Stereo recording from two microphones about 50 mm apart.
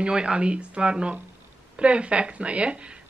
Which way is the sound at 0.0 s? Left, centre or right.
Centre.